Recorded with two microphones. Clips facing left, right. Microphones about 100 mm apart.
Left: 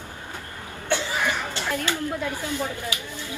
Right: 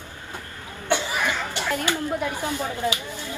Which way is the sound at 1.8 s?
20° right (ahead or behind).